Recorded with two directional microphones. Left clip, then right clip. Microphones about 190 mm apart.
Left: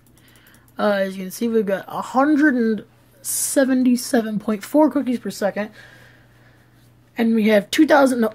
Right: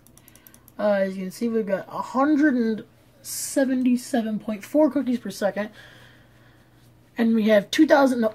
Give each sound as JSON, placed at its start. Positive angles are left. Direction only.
{"t": 0.7, "sound": "speech", "side_deg": 30}
{"t": 5.0, "sound": "speech", "side_deg": 20}
{"t": 7.2, "sound": "speech", "side_deg": 15}